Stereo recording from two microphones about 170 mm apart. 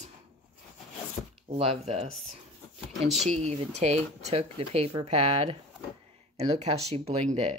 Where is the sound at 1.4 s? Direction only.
35° right (ahead or behind).